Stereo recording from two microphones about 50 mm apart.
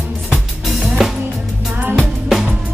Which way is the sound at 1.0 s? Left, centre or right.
Centre.